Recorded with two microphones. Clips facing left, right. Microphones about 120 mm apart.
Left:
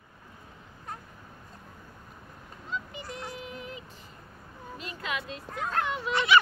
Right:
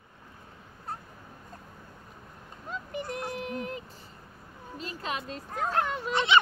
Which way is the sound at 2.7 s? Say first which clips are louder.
Right 3 dB; 50° right (ahead or behind).